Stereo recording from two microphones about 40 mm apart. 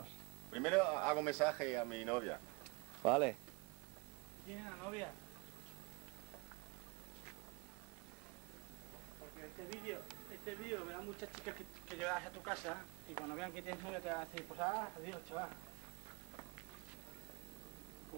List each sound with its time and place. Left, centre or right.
0.0 s a sound: right
3.0 s speech: right
4.5 s speech: right
9.4 s speech: centre